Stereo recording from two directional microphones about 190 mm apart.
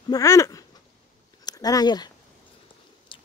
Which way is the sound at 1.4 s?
20° left (ahead or behind).